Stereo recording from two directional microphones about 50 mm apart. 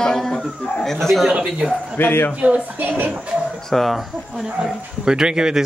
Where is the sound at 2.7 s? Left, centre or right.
Right.